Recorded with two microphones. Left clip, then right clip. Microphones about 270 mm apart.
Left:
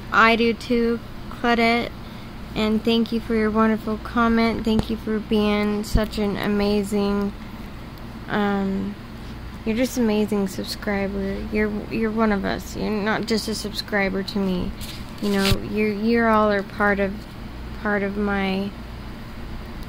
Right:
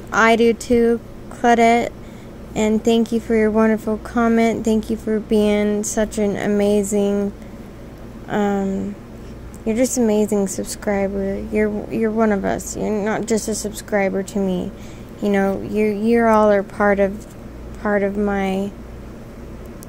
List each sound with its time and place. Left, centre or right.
0.1 s a woman's voice: centre
8.3 s a woman's voice: centre
10.0 s a woman's voice: centre